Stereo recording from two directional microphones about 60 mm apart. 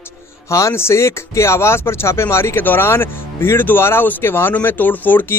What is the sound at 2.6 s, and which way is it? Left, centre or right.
A man's voice, left.